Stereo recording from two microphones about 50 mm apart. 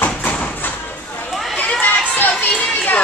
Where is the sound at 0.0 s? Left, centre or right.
Left.